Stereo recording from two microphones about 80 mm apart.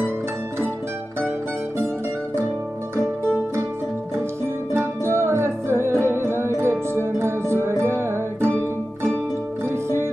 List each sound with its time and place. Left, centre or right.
4.7 s music: right